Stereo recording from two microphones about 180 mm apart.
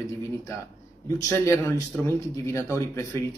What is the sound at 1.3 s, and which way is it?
A man's voice, 15° left (ahead or behind).